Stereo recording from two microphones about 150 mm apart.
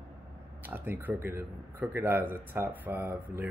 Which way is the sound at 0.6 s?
15° right (ahead or behind).